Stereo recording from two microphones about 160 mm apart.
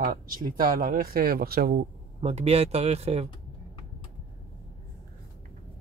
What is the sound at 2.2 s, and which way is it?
Speech, 40° right (ahead or behind).